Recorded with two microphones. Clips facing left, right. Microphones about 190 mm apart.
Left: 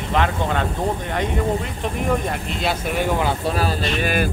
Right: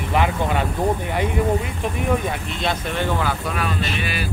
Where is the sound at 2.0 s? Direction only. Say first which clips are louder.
Even; centre (ahead or behind).